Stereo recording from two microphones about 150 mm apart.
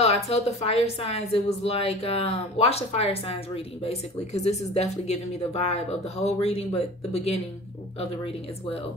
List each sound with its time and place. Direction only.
0.0 s a woman's voice: 45° left (ahead or behind)